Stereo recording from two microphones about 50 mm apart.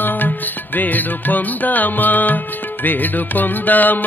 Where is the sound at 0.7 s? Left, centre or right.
Left.